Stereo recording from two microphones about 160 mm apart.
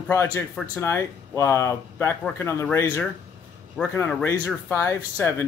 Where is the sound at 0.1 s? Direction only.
15° left (ahead or behind).